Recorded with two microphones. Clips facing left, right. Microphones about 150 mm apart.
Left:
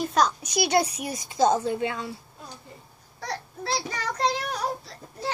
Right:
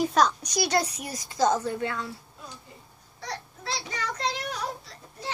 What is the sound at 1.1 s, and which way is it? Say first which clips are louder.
A woman's voice: left 2 dB; 25° left (ahead or behind).